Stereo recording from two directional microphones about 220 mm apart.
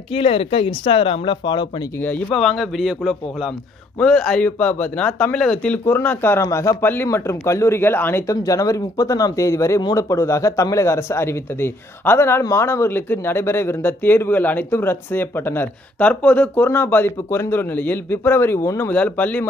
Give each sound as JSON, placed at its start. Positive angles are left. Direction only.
{"t": 0.1, "sound": "speech", "side_deg": 25}
{"t": 2.0, "sound": "a man's voice", "side_deg": 10}